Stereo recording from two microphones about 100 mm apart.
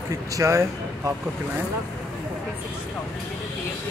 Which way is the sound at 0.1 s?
30° right (ahead or behind).